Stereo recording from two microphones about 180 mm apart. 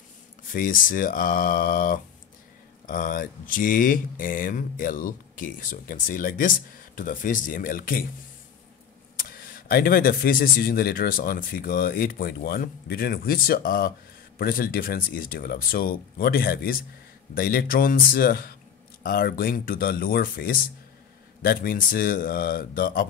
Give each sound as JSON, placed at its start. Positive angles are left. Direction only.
{"t": 0.5, "sound": "speech", "side_deg": 50}
{"t": 9.1, "sound": "speech", "side_deg": 55}